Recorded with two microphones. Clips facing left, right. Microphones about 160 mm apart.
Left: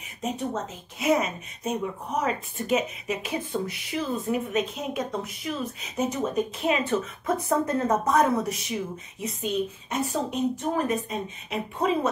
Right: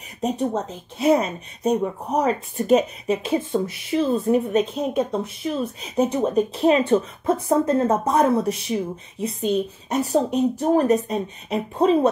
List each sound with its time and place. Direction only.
0.2 s a woman's voice: 35° right (ahead or behind)